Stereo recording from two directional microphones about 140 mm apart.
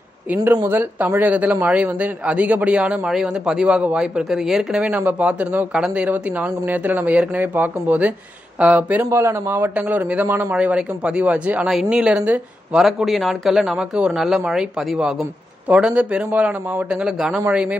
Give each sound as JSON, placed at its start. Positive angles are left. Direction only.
{"t": 0.3, "sound": "speech", "side_deg": -15}